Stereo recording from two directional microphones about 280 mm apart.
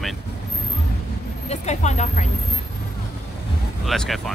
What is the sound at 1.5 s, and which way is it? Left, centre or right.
Speech, left.